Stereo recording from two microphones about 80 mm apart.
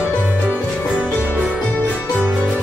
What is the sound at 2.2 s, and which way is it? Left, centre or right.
Music, centre.